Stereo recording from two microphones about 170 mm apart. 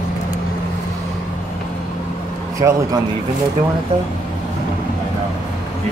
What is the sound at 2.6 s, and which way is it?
Speech, 15° right (ahead or behind).